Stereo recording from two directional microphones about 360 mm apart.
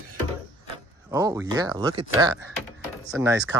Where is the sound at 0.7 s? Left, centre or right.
Centre.